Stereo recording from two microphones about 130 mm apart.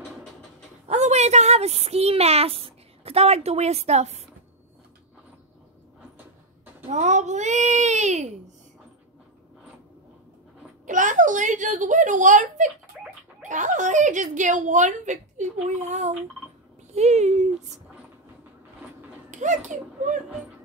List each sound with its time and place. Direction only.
0.8 s a child's voice: 60° right (ahead or behind)
6.9 s speech: 65° right (ahead or behind)
10.9 s a woman's voice: 75° right (ahead or behind); by 17.5 s 60° right (ahead or behind)
19.3 s a woman's voice: 70° right (ahead or behind)